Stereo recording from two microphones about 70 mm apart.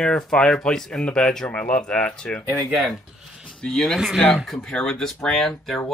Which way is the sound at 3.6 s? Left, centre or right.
Centre.